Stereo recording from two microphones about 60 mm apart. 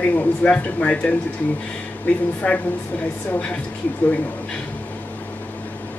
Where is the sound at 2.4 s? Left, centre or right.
Left.